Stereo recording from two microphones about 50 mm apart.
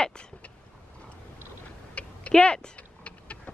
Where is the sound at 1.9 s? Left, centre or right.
Left.